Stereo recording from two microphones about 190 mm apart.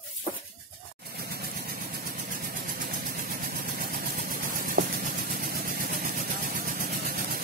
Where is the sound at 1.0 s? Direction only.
55° right (ahead or behind).